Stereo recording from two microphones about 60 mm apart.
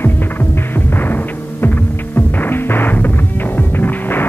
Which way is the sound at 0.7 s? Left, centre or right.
Left.